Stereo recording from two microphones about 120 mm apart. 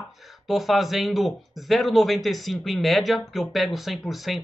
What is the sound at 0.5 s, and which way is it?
Speech, centre (ahead or behind).